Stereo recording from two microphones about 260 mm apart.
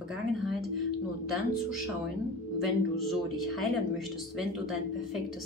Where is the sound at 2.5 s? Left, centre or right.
Centre.